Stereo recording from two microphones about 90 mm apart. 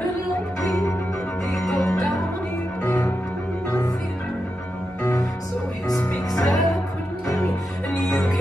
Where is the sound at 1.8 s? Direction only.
35° left (ahead or behind).